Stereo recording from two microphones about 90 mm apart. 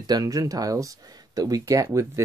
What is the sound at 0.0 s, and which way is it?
Speech, 45° right (ahead or behind).